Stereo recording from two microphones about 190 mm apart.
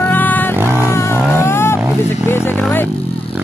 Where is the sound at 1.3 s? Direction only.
10° left (ahead or behind).